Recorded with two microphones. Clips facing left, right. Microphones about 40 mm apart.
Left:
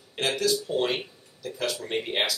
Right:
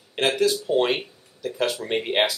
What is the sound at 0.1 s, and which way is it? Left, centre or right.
Speech, right.